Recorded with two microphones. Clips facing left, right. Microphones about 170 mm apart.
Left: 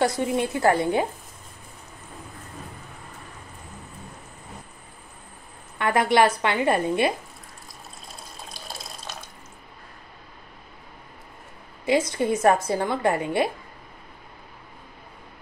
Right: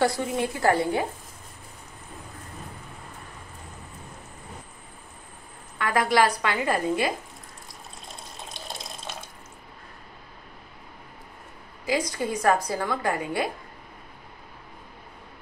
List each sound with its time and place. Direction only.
0.0 s a woman's voice: 20° left (ahead or behind)
5.8 s a woman's voice: 25° left (ahead or behind)
11.8 s a woman's voice: 25° left (ahead or behind)